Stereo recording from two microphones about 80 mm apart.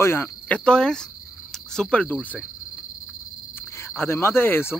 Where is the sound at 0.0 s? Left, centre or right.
Left.